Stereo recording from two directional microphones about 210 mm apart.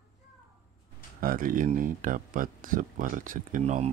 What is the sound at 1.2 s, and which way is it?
Speech, 40° right (ahead or behind).